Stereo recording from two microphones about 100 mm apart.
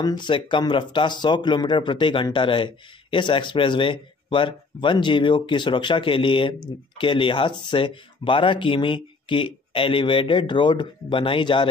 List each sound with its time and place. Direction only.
0.0 s speech: 45° left (ahead or behind)